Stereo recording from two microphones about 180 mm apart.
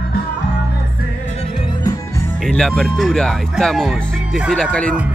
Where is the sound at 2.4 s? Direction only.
5° left (ahead or behind).